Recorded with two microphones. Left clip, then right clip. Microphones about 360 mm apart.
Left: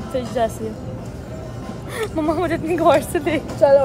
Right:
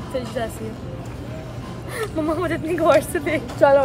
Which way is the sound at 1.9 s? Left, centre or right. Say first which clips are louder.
Left 2 dB; centre.